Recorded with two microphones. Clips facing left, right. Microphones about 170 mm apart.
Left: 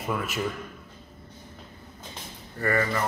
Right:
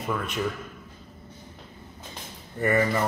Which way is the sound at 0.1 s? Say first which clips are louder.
Even; 5° left (ahead or behind).